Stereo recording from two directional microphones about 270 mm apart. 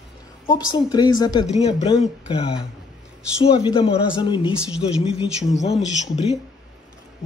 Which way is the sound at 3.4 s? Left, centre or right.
Centre.